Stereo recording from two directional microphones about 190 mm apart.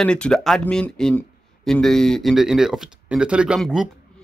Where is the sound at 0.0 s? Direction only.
5° left (ahead or behind).